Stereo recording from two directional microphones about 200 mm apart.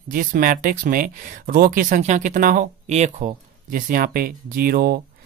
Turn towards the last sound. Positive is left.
turn(degrees=-50)  # may be behind; listen again after turning